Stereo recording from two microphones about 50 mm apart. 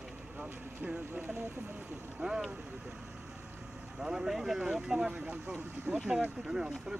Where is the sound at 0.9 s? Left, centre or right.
Right.